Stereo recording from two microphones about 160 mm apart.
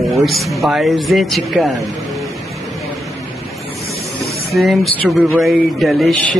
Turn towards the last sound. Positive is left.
turn(degrees=0)  # may be behind; listen again after turning